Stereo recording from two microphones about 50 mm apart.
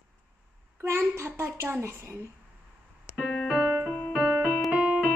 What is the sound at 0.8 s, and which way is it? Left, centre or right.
A child's voice, right.